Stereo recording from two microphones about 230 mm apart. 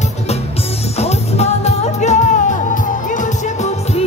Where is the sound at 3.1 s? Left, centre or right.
Left.